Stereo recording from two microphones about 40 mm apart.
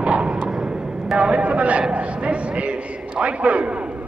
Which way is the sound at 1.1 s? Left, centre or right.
Right.